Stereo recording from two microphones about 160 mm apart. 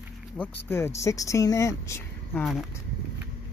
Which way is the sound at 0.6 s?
15° left (ahead or behind).